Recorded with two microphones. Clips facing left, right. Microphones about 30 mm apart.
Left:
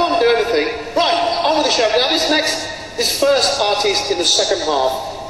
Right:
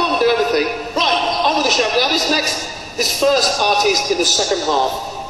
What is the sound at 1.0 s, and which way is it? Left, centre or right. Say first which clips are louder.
Speech: even; centre.